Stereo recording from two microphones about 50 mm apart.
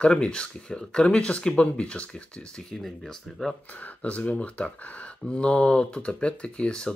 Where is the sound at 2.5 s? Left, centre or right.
Centre.